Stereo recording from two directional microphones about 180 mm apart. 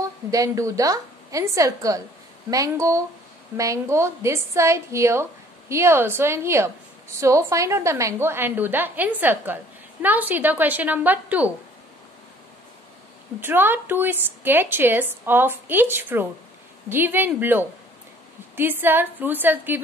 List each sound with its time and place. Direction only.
0.0 s a woman's voice: 20° right (ahead or behind)
13.4 s a woman's voice: 10° right (ahead or behind)